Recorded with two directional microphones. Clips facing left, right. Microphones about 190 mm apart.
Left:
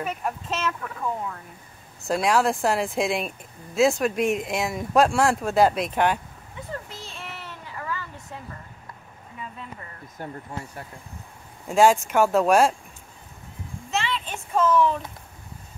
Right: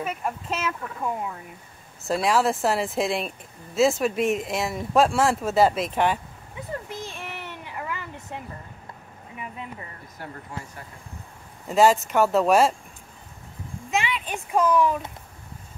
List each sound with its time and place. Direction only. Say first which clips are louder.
0.0 s speech: even; 5° right (ahead or behind)
2.0 s speech: even; centre (ahead or behind)
7.1 s a sound: right 2 dB; 15° right (ahead or behind)
11.6 s speech: even; centre (ahead or behind)
13.8 s speech: right 1 dB; 15° right (ahead or behind)